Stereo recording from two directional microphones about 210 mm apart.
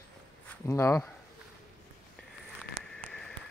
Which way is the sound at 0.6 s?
15° left (ahead or behind).